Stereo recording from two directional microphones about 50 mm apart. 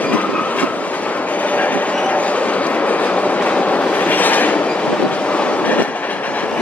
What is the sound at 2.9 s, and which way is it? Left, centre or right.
Train, left.